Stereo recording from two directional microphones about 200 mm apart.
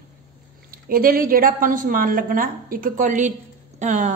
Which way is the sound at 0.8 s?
45° right (ahead or behind).